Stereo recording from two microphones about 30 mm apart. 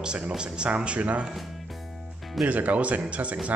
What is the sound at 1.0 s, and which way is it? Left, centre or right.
Speech, right.